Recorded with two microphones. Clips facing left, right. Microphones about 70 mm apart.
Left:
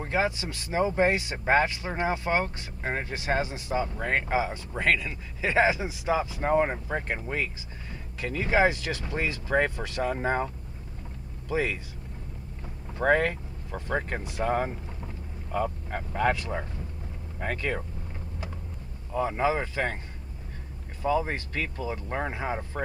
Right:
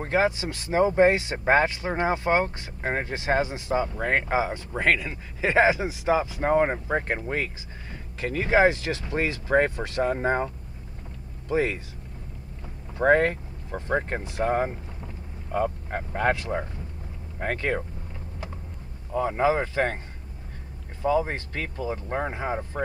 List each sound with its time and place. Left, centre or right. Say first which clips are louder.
0.0 s speech: right 4 dB; right
12.9 s speech: right 4 dB; right
17.4 s speech: right 3 dB; right
19.1 s speech: right 3 dB; right
21.0 s speech: right 3 dB; right